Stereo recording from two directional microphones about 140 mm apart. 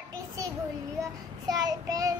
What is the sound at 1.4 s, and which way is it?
Child singing, 25° right (ahead or behind).